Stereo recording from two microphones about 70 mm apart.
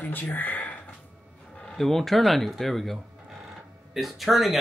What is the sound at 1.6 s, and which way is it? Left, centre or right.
Speech, centre.